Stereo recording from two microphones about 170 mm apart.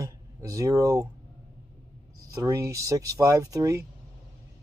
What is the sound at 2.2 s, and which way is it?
Speech, 20° right (ahead or behind).